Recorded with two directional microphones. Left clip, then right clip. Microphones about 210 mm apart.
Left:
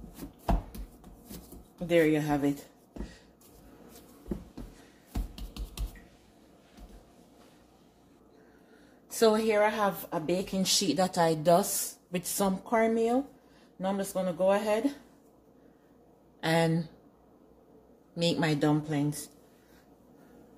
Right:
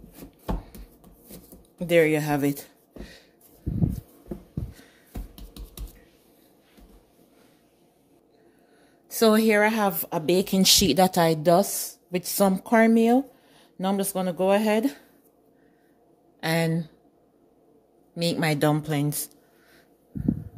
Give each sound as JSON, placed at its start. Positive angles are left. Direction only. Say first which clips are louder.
{"t": 1.9, "sound": "speech", "louder": "right 5 dB", "side_deg": -60}
{"t": 3.0, "sound": "a sound", "louder": "right 2 dB", "side_deg": -40}
{"t": 9.3, "sound": "speech", "louder": "right 5 dB", "side_deg": -55}
{"t": 12.6, "sound": "speech", "louder": "right 6 dB", "side_deg": -55}
{"t": 16.3, "sound": "speech", "louder": "right 1 dB", "side_deg": -30}
{"t": 18.1, "sound": "speech", "louder": "right 3 dB", "side_deg": -30}